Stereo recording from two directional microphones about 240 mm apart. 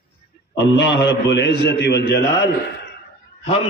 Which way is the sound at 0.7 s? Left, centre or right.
Left.